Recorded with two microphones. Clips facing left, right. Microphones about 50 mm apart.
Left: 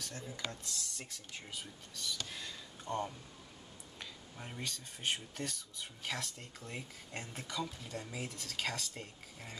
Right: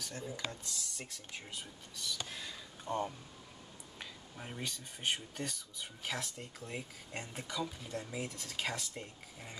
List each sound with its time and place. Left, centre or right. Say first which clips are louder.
0.0 s speech: right 2 dB; centre